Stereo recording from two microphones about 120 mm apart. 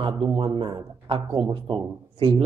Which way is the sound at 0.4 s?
45° right (ahead or behind).